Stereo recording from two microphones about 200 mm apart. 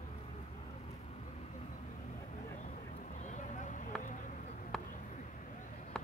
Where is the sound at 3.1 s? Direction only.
35° left (ahead or behind).